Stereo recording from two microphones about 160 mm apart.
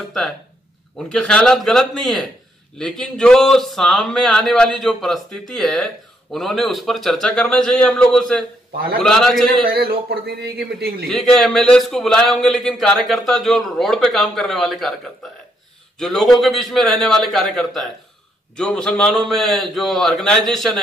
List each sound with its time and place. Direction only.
0.9 s a man's voice: 5° left (ahead or behind)
8.7 s a man's voice: 75° right (ahead or behind)
9.0 s a man's voice: 5° left (ahead or behind)
9.7 s speech: 80° right
11.1 s a man's voice: 5° left (ahead or behind)
16.0 s a man's voice: centre (ahead or behind)